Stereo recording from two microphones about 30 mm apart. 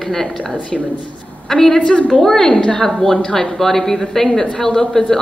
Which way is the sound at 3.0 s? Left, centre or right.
Left.